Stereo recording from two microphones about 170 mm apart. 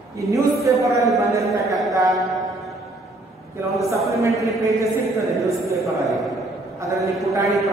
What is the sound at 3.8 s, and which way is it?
A man's voice, 20° right (ahead or behind).